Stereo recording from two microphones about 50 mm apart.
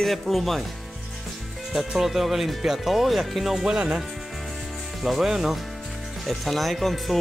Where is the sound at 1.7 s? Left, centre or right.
Centre.